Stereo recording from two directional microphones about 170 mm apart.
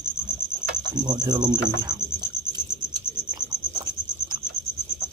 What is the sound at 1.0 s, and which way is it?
Cricket, 25° right (ahead or behind).